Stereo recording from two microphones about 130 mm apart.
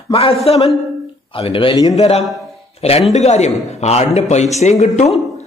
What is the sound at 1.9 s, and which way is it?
A man's voice, 55° left (ahead or behind).